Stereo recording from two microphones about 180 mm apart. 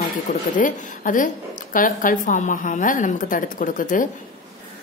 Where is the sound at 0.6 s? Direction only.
45° left (ahead or behind).